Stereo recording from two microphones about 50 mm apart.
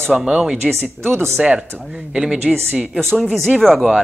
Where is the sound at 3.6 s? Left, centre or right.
Centre.